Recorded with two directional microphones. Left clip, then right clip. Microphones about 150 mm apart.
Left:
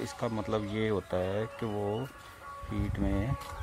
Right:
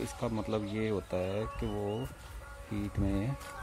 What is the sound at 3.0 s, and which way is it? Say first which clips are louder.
Speech: left 1 dB; 10° right (ahead or behind).